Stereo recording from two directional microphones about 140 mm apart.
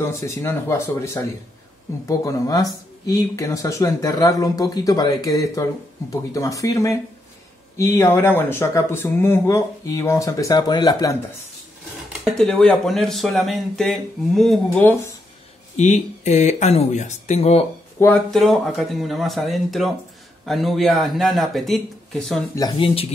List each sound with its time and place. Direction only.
0.0 s speech: 20° left (ahead or behind)
12.1 s speech: centre (ahead or behind)
15.7 s speech: 55° left (ahead or behind)
17.9 s speech: 15° left (ahead or behind)
18.3 s speech: centre (ahead or behind)
22.6 s speech: 40° left (ahead or behind)